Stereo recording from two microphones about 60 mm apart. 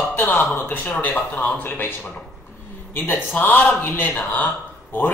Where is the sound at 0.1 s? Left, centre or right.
Left.